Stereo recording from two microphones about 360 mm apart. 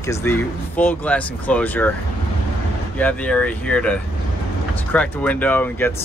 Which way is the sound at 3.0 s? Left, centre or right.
Centre.